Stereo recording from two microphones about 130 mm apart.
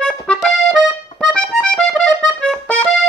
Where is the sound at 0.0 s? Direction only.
5° left (ahead or behind).